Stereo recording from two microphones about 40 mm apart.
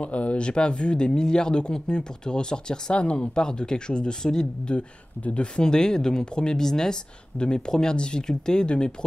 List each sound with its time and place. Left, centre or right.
0.0 s speech: left; by 4.5 s centre
4.6 s speech: left
5.6 s speech: centre